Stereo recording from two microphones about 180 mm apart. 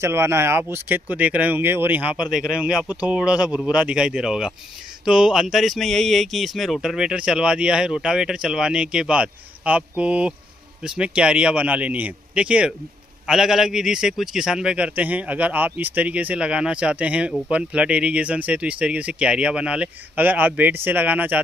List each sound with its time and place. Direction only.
0.0 s speech: 15° right (ahead or behind)